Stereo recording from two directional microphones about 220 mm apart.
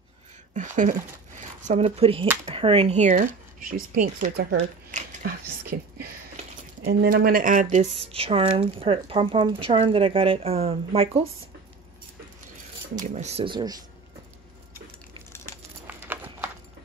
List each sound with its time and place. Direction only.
0.6 s speech: 35° right (ahead or behind)
4.6 s a sound: 35° right (ahead or behind)
6.8 s speech: 45° right (ahead or behind)
8.0 s speech: 25° right (ahead or behind)
13.0 s speech: 30° right (ahead or behind)
15.9 s a sound: 10° right (ahead or behind)